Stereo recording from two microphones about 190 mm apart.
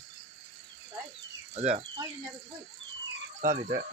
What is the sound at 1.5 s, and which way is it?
Speech, 35° right (ahead or behind).